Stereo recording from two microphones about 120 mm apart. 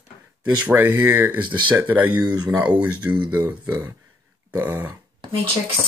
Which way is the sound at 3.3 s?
25° right (ahead or behind).